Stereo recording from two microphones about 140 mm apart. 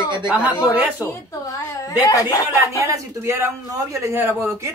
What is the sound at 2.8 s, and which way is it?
A man's voice, 25° right (ahead or behind).